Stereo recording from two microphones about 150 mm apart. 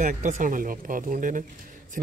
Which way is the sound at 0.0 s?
55° right (ahead or behind).